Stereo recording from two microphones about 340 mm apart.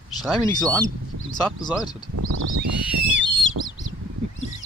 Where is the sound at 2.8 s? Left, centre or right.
Centre.